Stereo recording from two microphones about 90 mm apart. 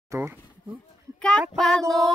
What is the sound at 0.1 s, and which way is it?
Speech, 30° right (ahead or behind).